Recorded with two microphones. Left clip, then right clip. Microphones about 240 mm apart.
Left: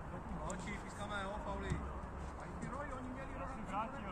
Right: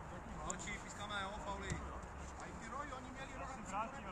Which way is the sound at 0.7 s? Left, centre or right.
Right.